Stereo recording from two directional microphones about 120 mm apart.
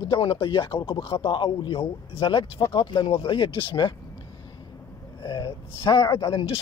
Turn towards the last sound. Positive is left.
turn(degrees=35)  # may be behind; listen again after turning